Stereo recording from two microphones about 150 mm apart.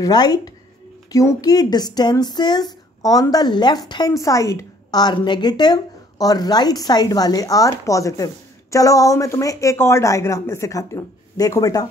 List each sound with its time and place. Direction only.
0.0 s speech: 25° left (ahead or behind)